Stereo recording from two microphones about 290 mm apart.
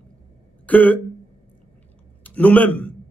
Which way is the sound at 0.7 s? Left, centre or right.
Centre.